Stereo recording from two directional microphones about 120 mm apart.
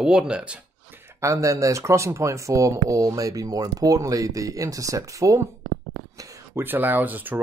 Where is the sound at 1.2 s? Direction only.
25° right (ahead or behind).